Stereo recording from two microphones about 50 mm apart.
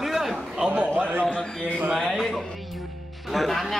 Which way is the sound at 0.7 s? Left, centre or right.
Right.